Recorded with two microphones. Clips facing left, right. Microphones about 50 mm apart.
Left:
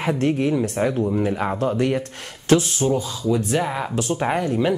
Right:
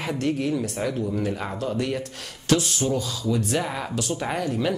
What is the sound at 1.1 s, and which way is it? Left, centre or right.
Speech, left.